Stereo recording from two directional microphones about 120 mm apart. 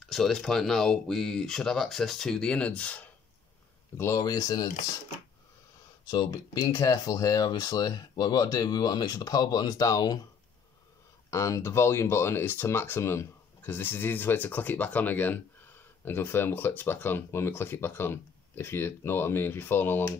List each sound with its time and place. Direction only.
0.0 s speech: 5° left (ahead or behind)
3.9 s speech: 25° left (ahead or behind)
6.0 s speech: 35° left (ahead or behind)
11.2 s speech: 25° left (ahead or behind)